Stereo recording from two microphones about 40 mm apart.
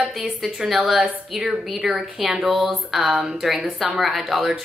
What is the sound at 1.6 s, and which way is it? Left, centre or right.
Speech, centre.